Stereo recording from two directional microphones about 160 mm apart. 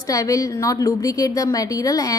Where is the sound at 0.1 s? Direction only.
20° left (ahead or behind).